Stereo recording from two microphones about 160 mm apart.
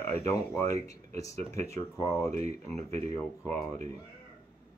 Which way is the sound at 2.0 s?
20° left (ahead or behind).